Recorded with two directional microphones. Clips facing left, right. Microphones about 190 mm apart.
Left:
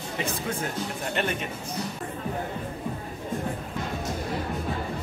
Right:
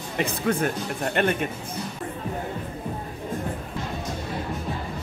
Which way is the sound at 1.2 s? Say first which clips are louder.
Right 6 dB; 55° right (ahead or behind).